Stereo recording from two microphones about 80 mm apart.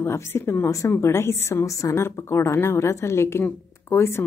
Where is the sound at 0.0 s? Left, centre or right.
Left.